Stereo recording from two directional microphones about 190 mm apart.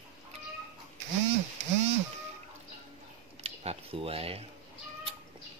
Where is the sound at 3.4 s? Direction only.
30° right (ahead or behind).